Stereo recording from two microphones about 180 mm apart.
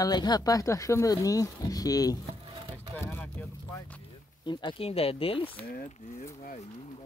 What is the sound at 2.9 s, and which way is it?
Vehicle, 10° left (ahead or behind).